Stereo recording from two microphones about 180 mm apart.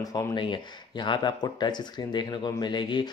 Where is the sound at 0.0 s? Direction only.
20° left (ahead or behind).